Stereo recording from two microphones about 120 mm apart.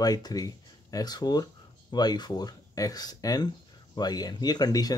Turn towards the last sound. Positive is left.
turn(degrees=35)  # may be behind; listen again after turning